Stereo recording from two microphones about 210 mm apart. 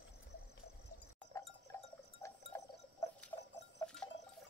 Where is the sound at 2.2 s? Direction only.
15° left (ahead or behind).